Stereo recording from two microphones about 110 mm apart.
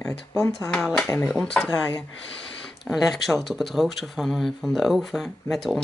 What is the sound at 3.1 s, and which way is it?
Speech, centre (ahead or behind).